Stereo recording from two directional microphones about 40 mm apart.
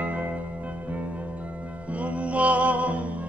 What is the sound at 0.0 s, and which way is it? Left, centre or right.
Music, right.